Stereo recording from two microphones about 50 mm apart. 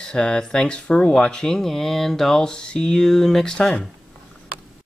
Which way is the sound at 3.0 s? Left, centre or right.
Centre.